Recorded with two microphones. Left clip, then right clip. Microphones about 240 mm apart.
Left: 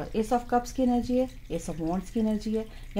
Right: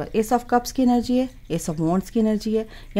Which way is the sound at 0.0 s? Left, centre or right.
Right.